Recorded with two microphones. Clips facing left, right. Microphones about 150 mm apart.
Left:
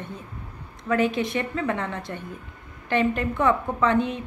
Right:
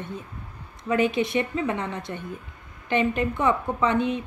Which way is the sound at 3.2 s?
10° right (ahead or behind).